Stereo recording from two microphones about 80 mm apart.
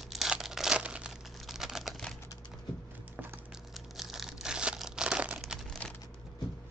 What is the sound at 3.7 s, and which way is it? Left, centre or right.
Crumpling, centre.